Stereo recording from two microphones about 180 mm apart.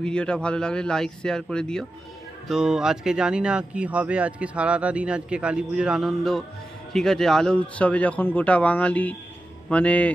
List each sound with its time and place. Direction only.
0.0 s speech: 5° left (ahead or behind)